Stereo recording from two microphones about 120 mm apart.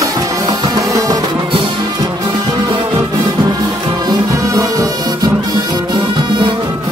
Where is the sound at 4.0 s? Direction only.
30° right (ahead or behind).